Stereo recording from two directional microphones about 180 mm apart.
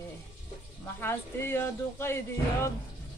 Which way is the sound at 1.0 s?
15° left (ahead or behind).